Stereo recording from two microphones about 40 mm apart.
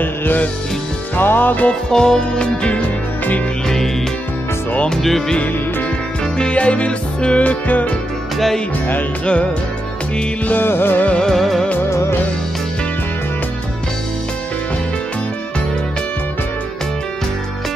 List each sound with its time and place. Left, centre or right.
0.0 s music: left
1.9 s music: centre
3.6 s music: centre
6.3 s music: left
7.4 s music: left
9.2 s music: left
10.6 s music: left
11.3 s music: centre